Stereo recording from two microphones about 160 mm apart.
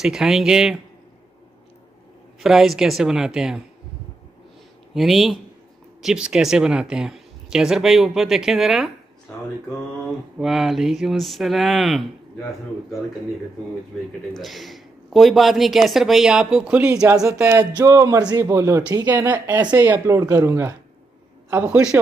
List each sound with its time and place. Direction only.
0.0 s speech: centre (ahead or behind)
2.4 s speech: centre (ahead or behind)
4.9 s speech: centre (ahead or behind)
10.4 s speech: centre (ahead or behind)
14.3 s speech: centre (ahead or behind)